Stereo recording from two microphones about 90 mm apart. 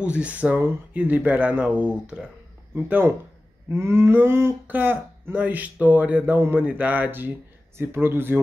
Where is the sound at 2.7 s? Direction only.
25° right (ahead or behind).